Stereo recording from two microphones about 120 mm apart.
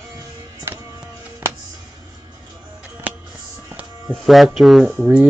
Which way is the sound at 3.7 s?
15° right (ahead or behind).